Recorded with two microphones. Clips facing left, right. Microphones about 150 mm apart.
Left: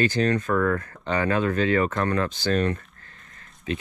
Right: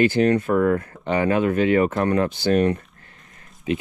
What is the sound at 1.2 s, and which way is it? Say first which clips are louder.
Speech: right 4 dB; 20° right (ahead or behind).